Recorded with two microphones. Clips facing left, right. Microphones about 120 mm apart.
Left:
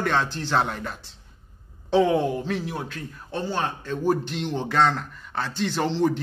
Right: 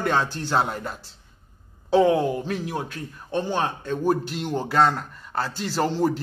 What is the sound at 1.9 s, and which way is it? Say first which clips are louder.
Speech: right 2 dB; centre (ahead or behind).